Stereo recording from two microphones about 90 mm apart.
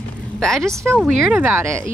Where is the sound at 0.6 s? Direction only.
30° right (ahead or behind).